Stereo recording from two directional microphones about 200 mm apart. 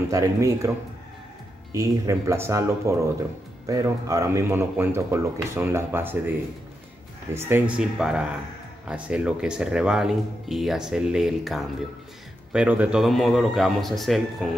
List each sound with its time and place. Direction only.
0.1 s speech: 15° right (ahead or behind)
1.7 s speech: 15° right (ahead or behind)
7.3 s speech: 10° right (ahead or behind)